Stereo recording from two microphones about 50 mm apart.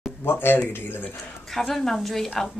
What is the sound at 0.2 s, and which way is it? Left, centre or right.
Speech, left.